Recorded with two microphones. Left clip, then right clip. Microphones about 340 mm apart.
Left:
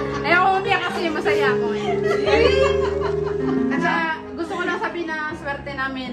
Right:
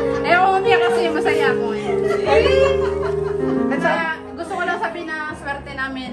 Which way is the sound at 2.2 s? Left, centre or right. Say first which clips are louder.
Right 2 dB; right.